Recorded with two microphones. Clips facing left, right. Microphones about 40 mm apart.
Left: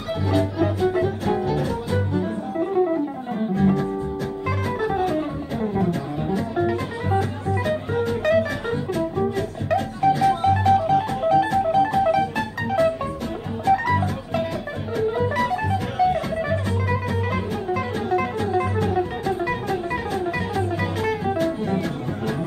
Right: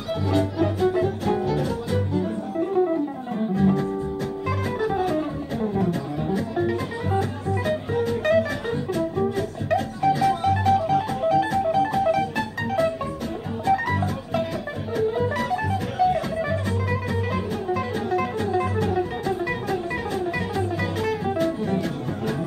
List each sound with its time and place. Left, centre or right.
0.1 s music: centre
7.9 s music: centre
8.2 s music: centre